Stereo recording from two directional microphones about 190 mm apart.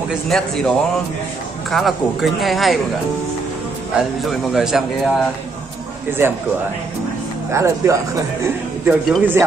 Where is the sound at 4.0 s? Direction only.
Centre (ahead or behind).